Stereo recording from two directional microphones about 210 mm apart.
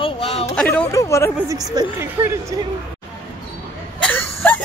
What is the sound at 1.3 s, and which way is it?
A woman's voice, 15° right (ahead or behind).